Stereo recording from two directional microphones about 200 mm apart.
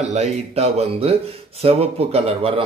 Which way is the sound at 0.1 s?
35° right (ahead or behind).